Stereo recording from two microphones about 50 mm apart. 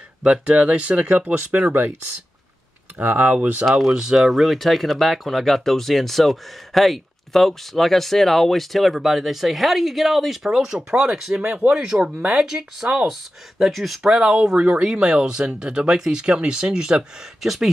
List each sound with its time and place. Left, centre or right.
0.2 s speech: centre; by 1.9 s right
3.0 s speech: right
3.6 s speech: centre
11.8 s speech: right
13.1 s speech: centre
14.1 s speech: centre
17.4 s speech: centre